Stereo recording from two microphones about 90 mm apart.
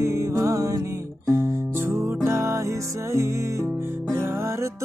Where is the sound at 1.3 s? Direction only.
30° right (ahead or behind).